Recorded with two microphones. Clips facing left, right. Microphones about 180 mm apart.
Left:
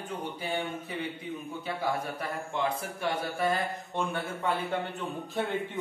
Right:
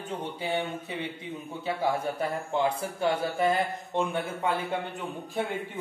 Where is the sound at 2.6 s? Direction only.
30° right (ahead or behind).